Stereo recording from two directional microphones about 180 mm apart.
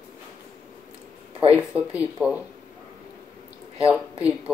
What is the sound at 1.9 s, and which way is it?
Speech, 5° right (ahead or behind).